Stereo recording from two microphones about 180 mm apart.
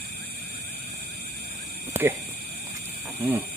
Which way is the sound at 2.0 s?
15° right (ahead or behind).